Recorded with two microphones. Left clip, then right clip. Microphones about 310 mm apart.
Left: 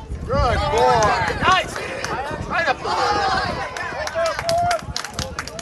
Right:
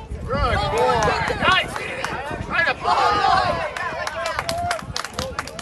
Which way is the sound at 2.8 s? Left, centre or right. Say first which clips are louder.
Right 2 dB; centre.